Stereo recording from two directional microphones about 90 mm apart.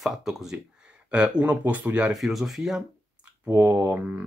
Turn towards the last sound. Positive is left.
turn(degrees=-20)  # may be behind; listen again after turning